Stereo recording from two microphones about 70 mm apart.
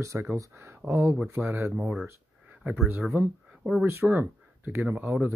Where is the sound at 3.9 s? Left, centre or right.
Right.